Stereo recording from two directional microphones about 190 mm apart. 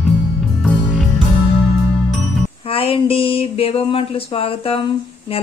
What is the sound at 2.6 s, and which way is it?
A woman's voice, 30° left (ahead or behind).